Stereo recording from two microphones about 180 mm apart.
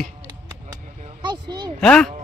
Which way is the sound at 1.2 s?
25° right (ahead or behind).